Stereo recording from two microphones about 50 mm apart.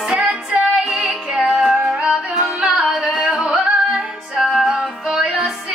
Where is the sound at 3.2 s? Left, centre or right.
Centre.